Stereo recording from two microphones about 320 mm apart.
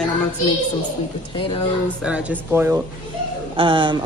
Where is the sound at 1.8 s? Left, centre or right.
Centre.